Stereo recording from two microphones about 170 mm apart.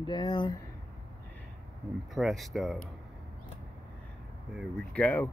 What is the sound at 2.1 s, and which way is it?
Speech, centre (ahead or behind).